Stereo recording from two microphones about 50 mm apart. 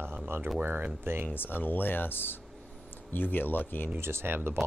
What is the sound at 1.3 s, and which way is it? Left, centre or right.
Speech, left.